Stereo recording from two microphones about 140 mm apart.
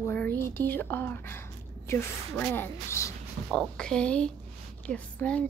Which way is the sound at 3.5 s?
5° left (ahead or behind).